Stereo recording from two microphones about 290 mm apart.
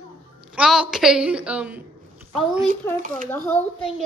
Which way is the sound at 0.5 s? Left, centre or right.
Centre.